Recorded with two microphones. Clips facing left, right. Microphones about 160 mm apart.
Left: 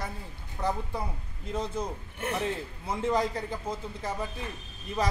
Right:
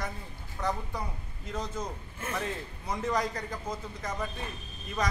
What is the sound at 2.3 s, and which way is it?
A man's voice, 25° left (ahead or behind).